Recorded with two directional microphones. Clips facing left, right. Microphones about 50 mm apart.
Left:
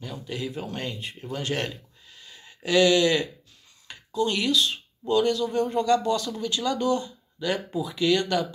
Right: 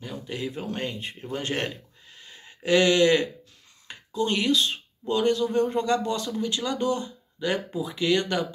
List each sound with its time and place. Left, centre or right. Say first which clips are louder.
0.0 s speech: even; right